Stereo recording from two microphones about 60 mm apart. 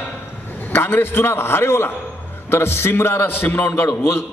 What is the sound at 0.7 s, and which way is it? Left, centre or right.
A man's voice, left.